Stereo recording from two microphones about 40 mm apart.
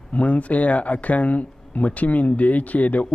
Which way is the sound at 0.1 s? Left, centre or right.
Left.